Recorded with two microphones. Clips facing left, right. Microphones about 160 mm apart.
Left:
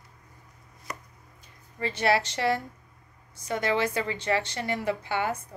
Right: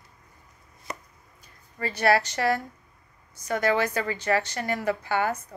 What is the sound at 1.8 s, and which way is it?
A woman's voice, 25° left (ahead or behind).